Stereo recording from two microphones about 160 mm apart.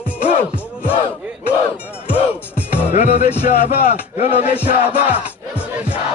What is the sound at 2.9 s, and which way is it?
Speech, 45° left (ahead or behind).